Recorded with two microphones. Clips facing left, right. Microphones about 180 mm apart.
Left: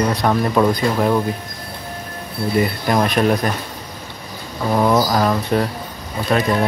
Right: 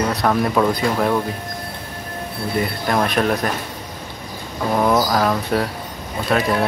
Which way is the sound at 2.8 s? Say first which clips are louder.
Even; 5° left (ahead or behind).